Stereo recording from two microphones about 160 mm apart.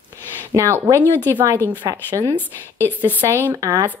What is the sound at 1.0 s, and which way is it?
Speech, 15° left (ahead or behind).